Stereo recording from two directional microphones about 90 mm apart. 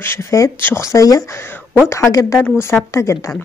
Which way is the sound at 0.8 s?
40° left (ahead or behind).